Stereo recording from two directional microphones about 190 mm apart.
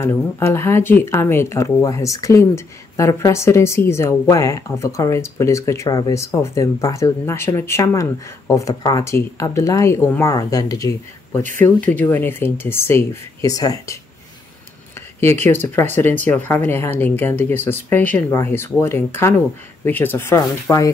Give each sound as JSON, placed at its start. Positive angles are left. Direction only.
{"t": 0.0, "sound": "speech", "side_deg": 15}
{"t": 15.7, "sound": "speech", "side_deg": 10}